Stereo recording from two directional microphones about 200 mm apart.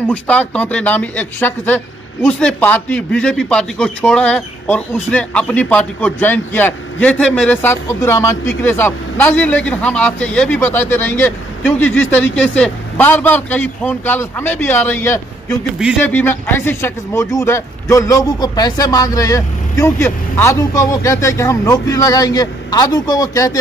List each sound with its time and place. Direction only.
0.1 s a man's voice: 5° left (ahead or behind)